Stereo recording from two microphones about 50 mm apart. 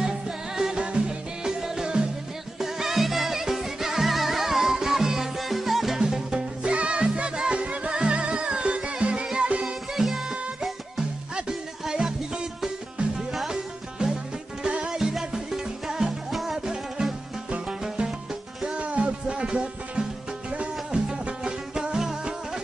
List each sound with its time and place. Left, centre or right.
0.6 s music: centre
9.9 s music: centre
11.3 s music: centre
13.3 s music: centre
13.9 s music: centre
18.8 s music: right